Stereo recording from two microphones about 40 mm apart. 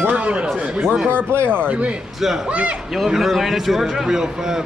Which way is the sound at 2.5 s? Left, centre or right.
Right.